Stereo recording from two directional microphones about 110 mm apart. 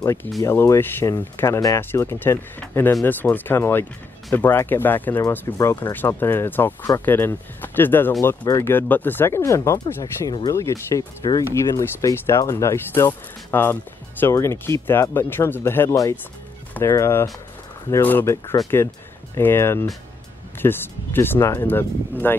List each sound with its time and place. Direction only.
0.0 s speech: 25° left (ahead or behind)